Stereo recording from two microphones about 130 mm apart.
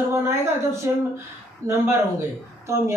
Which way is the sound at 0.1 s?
20° right (ahead or behind).